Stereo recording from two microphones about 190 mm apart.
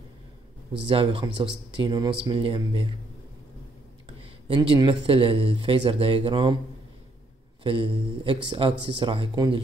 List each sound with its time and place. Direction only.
0.8 s speech: 30° right (ahead or behind)
4.2 s speech: 25° right (ahead or behind)
7.6 s speech: 25° right (ahead or behind)